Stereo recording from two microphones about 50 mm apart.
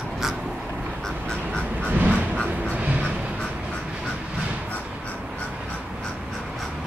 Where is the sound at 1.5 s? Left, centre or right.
Left.